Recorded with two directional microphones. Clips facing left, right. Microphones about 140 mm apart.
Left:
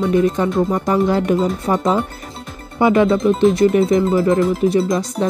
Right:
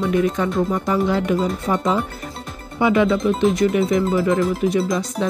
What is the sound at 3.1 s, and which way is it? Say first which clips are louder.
Speech: left 4 dB; centre (ahead or behind).